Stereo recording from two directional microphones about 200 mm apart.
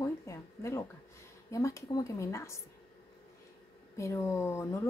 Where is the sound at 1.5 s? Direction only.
15° left (ahead or behind).